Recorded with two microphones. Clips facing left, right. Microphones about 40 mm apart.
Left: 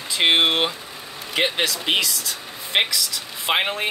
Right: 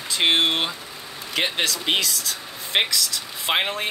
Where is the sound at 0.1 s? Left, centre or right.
Centre.